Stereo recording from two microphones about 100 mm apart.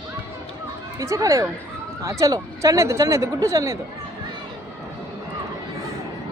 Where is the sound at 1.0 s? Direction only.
30° right (ahead or behind).